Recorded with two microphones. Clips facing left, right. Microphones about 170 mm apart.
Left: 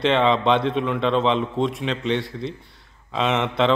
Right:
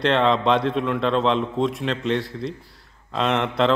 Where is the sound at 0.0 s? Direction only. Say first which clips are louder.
Even; centre (ahead or behind).